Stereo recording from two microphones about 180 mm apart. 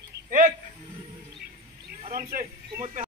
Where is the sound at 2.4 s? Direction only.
45° right (ahead or behind).